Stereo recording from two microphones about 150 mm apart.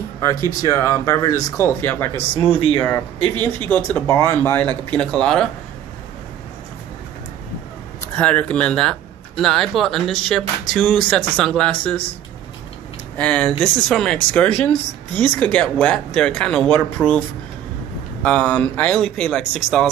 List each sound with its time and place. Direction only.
0.2 s speech: 20° left (ahead or behind); by 5.5 s 5° left (ahead or behind)
8.0 s speech: 10° left (ahead or behind)
13.2 s speech: 5° left (ahead or behind)
18.2 s speech: 10° left (ahead or behind)